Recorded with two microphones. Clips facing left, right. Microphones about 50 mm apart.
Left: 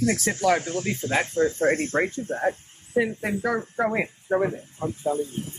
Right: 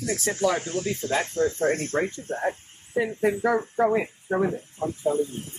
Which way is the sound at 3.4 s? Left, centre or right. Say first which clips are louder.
Right 3 dB; right.